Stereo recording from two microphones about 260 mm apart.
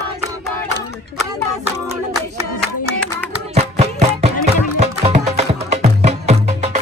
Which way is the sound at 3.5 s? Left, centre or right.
Right.